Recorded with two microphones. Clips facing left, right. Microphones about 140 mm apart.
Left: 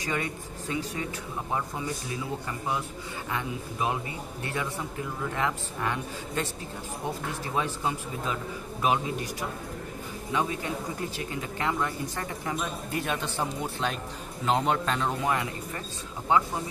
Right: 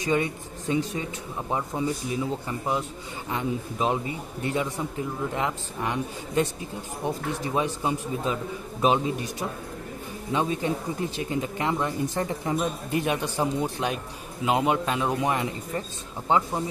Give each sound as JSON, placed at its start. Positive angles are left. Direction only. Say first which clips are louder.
{"t": 0.0, "sound": "speech", "louder": "right 6 dB", "side_deg": -20}
{"t": 3.3, "sound": "a man's voice", "louder": "right 5 dB", "side_deg": -25}